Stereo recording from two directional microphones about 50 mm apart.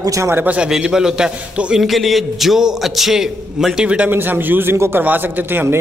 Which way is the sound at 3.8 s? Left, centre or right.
Right.